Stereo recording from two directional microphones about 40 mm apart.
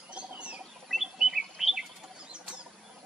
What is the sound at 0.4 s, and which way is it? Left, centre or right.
Rodents, right.